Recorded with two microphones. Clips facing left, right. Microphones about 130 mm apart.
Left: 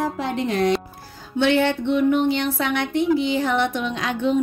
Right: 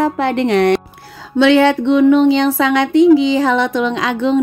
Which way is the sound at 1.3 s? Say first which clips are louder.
Right 8 dB; 90° right.